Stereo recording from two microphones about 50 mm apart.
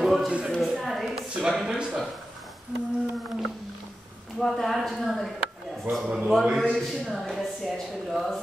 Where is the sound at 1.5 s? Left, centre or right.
Centre.